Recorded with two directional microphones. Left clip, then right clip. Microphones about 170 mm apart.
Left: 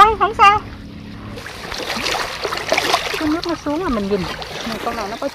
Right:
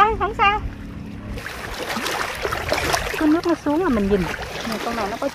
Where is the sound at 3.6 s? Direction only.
20° right (ahead or behind).